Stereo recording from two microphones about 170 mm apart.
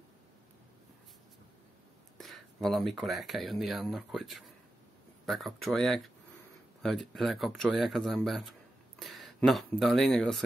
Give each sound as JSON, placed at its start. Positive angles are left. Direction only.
{"t": 2.1, "sound": "speech", "side_deg": 0}